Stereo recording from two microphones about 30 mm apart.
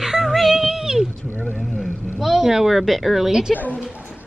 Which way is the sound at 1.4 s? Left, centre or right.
Right.